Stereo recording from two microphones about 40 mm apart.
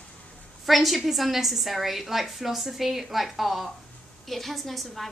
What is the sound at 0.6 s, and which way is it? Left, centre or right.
A woman's voice, centre.